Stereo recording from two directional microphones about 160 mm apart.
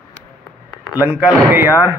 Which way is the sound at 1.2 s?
10° right (ahead or behind).